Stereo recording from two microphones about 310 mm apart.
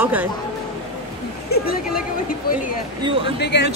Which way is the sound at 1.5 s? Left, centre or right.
Left.